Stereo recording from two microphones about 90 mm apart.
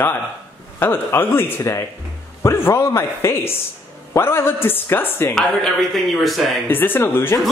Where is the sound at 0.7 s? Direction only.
25° left (ahead or behind).